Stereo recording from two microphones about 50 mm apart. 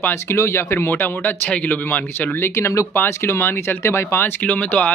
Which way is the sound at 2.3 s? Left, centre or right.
Left.